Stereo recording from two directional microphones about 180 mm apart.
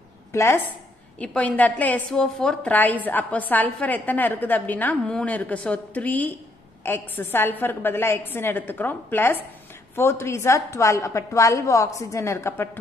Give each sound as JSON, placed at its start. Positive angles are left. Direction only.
{"t": 0.3, "sound": "a woman's voice", "side_deg": 15}